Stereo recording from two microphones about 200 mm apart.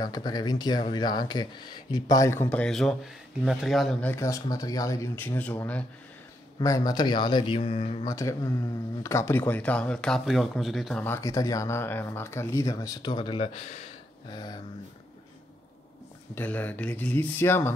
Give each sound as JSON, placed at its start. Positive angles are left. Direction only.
{"t": 0.0, "sound": "speech", "side_deg": 20}
{"t": 4.1, "sound": "speech", "side_deg": 15}
{"t": 6.6, "sound": "speech", "side_deg": 20}
{"t": 8.0, "sound": "speech", "side_deg": 15}
{"t": 14.3, "sound": "speech", "side_deg": 20}
{"t": 16.3, "sound": "speech", "side_deg": 10}